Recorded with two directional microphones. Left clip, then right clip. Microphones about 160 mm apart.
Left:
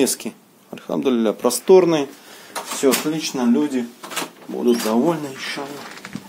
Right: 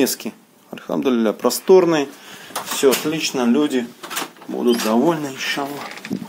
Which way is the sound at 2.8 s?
20° right (ahead or behind).